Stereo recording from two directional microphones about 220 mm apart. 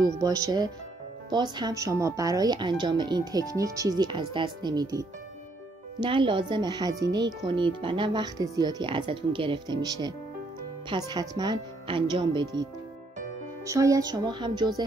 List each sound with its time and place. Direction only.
0.0 s speech: 15° right (ahead or behind)
13.7 s speech: 15° right (ahead or behind)